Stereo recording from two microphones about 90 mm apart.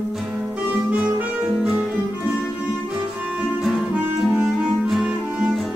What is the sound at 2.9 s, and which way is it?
Music, 10° right (ahead or behind).